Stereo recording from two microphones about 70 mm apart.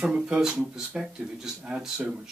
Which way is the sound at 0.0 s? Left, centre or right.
Centre.